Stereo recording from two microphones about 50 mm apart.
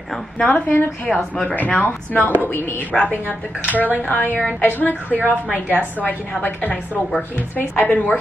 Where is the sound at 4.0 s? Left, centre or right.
Left.